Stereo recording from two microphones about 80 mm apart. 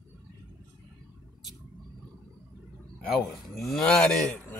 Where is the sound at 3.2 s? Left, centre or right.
Centre.